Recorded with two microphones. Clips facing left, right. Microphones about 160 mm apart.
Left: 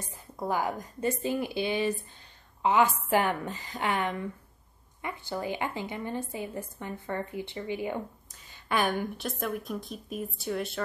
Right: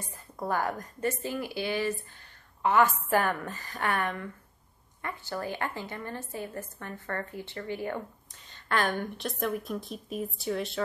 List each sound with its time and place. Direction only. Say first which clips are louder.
0.5 s a woman's voice: even; 15° left (ahead or behind)
8.3 s a woman's voice: right 1 dB; 5° left (ahead or behind)